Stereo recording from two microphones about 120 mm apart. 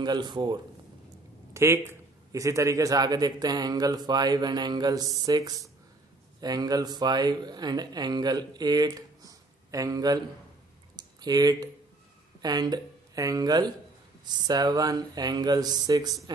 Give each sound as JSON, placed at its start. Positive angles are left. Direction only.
{"t": 0.0, "sound": "a man's voice", "side_deg": -35}
{"t": 1.5, "sound": "a man's voice", "side_deg": -25}
{"t": 11.0, "sound": "a sound", "side_deg": -35}
{"t": 12.4, "sound": "a man's voice", "side_deg": -35}